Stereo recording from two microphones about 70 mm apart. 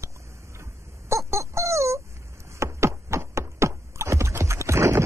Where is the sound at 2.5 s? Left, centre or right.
Right.